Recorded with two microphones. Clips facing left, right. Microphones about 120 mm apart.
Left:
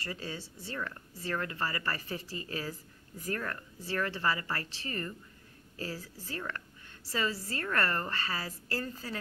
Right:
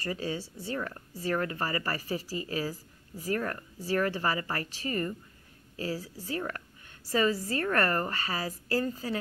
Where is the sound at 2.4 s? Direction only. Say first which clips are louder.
Right 5 dB; 40° right (ahead or behind).